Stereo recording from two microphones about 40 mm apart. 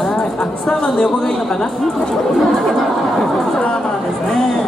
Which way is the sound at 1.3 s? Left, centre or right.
Centre.